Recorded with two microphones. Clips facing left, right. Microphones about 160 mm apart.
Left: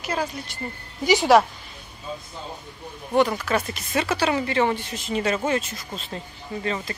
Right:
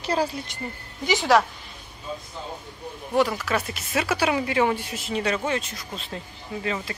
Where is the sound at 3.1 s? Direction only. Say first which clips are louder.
Left 2 dB; centre (ahead or behind).